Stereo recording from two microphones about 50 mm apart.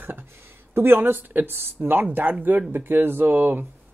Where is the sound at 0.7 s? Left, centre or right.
Right.